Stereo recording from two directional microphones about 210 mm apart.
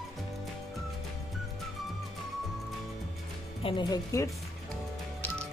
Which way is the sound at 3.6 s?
20° left (ahead or behind).